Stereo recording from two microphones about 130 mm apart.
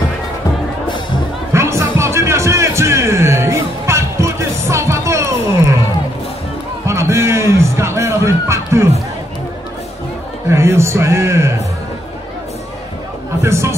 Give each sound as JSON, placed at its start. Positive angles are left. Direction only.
{"t": 1.5, "sound": "music", "side_deg": -20}
{"t": 6.9, "sound": "music", "side_deg": -20}
{"t": 10.5, "sound": "speech", "side_deg": -20}
{"t": 13.4, "sound": "a sound", "side_deg": -20}